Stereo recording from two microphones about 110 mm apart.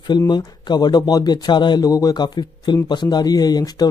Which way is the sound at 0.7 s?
40° left (ahead or behind).